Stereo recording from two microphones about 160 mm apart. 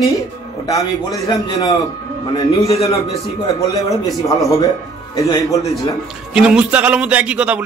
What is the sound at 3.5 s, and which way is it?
Speech, 20° left (ahead or behind).